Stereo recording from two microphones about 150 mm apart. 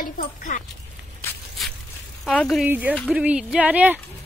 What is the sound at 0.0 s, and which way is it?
Speech, 65° left (ahead or behind).